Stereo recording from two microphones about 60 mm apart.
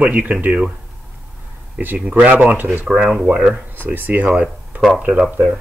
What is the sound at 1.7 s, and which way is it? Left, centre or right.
Speech, right.